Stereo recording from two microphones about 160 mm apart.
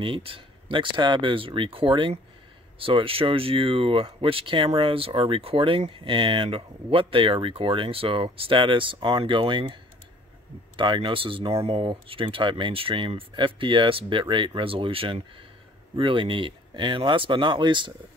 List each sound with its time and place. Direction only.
0.0 s speech: 35° right (ahead or behind)
10.8 s speech: 30° right (ahead or behind)